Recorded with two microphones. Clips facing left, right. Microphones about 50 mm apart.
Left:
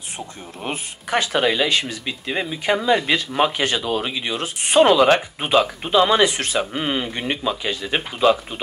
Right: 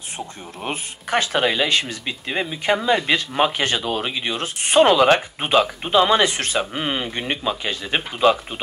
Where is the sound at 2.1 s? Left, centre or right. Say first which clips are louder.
Even; right.